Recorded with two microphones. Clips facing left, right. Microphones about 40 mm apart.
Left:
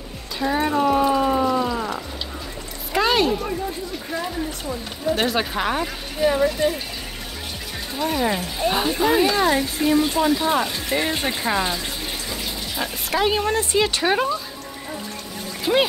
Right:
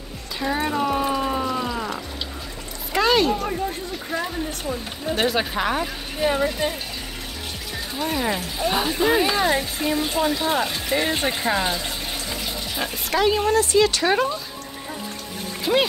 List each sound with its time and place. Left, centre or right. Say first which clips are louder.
0.4 s speech: left 3 dB; centre
1.1 s pour: left 4 dB; centre
2.9 s a sound: even; centre
4.6 s speech: left 2 dB; centre
6.2 s speech: left 3 dB; centre
8.0 s speech: left 2 dB; centre
12.7 s speech: even; centre
13.3 s speech: right 2 dB; left
13.7 s speech: even; centre
15.6 s speech: left 1 dB; centre